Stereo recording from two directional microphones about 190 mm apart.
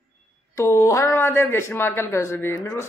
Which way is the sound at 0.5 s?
15° left (ahead or behind).